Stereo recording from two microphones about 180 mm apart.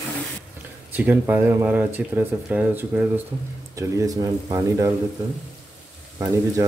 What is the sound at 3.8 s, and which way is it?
Speech, 20° right (ahead or behind).